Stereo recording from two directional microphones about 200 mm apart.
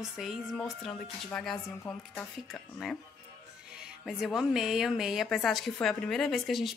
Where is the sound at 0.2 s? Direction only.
Centre (ahead or behind).